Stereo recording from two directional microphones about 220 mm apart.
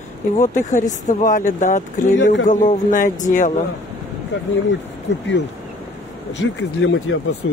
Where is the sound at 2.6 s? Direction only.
35° left (ahead or behind).